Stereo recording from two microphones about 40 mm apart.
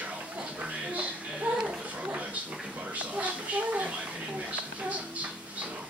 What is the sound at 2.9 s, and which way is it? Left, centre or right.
Speech, right.